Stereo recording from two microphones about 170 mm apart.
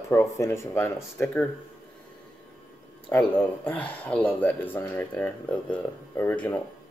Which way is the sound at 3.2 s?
10° left (ahead or behind).